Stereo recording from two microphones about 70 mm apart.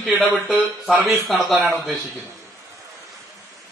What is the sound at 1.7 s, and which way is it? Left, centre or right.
Speech, right.